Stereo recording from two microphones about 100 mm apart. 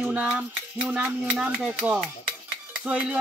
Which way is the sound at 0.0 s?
10° right (ahead or behind).